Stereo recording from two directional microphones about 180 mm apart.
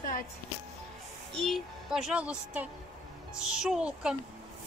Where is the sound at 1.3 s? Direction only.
Centre (ahead or behind).